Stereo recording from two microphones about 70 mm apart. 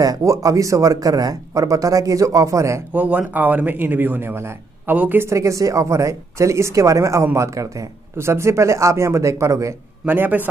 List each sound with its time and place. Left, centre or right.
0.0 s speech: right
2.9 s speech: right
5.2 s speech: right
10.0 s speech: right